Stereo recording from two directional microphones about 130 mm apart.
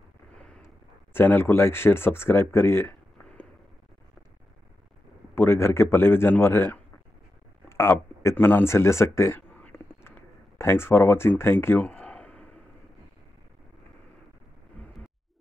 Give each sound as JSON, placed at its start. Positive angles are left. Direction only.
{"t": 1.1, "sound": "speech", "side_deg": 15}
{"t": 5.3, "sound": "a man's voice", "side_deg": 20}
{"t": 7.7, "sound": "a sound", "side_deg": 20}